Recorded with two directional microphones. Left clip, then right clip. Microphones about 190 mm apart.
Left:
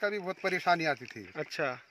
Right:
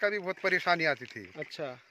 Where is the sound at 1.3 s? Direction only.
5° left (ahead or behind).